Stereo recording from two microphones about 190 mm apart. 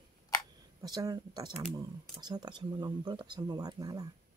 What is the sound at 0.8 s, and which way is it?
Speech, 20° right (ahead or behind).